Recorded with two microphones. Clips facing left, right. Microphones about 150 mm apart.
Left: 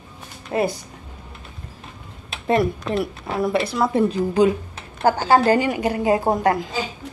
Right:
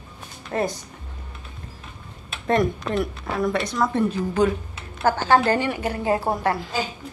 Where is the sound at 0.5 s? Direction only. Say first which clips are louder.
Left 3 dB; 15° left (ahead or behind).